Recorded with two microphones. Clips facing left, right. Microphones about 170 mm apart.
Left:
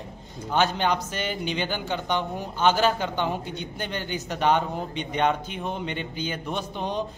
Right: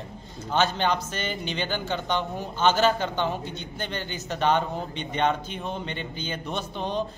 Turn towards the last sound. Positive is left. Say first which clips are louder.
# even
turn(degrees=10)  # may be behind; listen again after turning